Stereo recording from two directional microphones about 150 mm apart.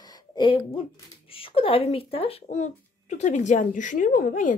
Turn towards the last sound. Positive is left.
turn(degrees=65)  # may be behind; listen again after turning